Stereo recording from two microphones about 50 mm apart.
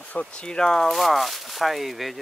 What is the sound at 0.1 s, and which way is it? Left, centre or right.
Speech, left.